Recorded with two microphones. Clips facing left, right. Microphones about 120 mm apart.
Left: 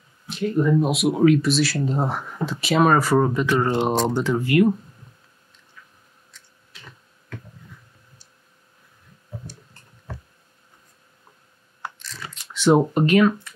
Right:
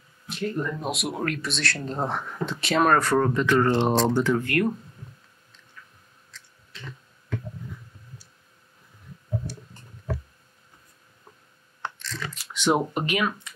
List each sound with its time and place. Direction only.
0.3 s speech: centre (ahead or behind); by 4.4 s 20° left (ahead or behind)
4.4 s speech: 10° left (ahead or behind)
12.6 s a sound: 15° right (ahead or behind)
12.9 s speech: 10° right (ahead or behind)